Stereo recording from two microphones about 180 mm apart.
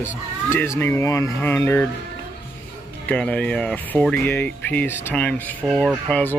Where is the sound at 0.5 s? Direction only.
15° left (ahead or behind).